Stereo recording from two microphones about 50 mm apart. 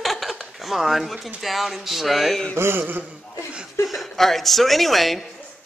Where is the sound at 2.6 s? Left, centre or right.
Right.